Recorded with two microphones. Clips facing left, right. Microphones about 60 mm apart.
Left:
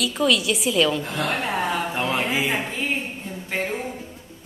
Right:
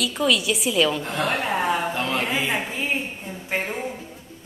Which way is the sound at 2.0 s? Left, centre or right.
Centre.